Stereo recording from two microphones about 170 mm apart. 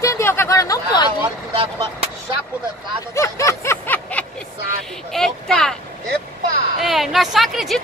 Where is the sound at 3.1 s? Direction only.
15° left (ahead or behind).